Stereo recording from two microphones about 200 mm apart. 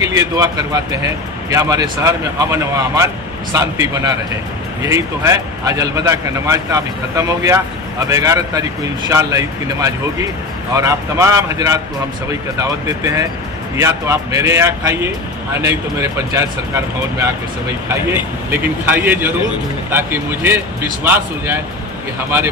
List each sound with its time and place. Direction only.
0.0 s speech: 15° right (ahead or behind)